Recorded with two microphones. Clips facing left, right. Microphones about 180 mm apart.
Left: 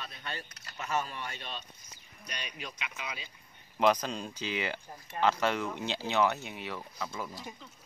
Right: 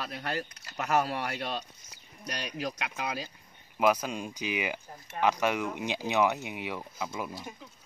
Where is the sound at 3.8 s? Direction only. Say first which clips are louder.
Right 1 dB; 10° right (ahead or behind).